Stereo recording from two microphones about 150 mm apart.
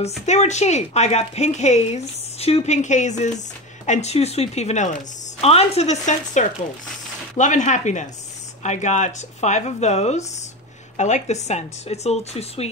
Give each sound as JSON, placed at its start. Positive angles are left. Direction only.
{"t": 0.3, "sound": "speech", "side_deg": 50}